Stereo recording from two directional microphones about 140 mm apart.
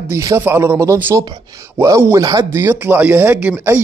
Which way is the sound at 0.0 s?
20° right (ahead or behind).